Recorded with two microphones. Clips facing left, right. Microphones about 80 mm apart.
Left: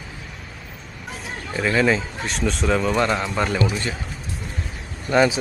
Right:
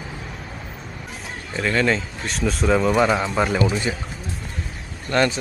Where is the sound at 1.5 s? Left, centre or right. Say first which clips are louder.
Left 1 dB; centre.